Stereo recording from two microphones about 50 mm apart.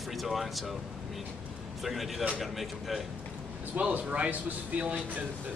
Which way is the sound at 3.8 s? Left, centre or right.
Right.